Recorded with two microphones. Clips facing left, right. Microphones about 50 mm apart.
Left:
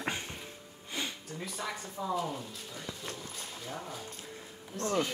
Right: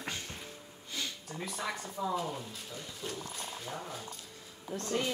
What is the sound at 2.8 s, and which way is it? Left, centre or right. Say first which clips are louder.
Speech: even; left.